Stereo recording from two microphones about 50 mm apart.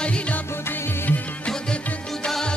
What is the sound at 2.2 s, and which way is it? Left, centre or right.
Music, centre.